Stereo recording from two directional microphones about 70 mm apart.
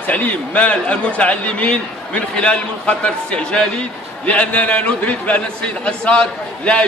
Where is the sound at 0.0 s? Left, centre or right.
Left.